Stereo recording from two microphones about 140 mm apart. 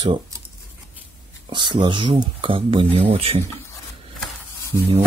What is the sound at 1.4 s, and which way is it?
Speech, 35° right (ahead or behind).